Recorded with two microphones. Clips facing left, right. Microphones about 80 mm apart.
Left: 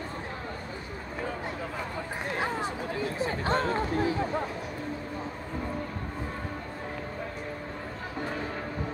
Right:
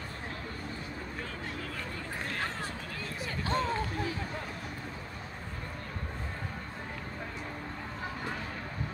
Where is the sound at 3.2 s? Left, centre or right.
Left.